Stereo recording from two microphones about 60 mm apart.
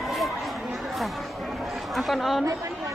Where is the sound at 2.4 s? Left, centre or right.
Right.